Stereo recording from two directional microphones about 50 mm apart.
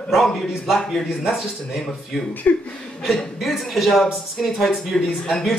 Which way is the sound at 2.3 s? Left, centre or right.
Left.